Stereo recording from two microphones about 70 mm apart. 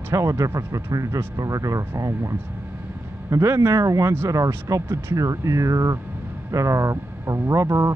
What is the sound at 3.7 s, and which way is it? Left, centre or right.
Speech, right.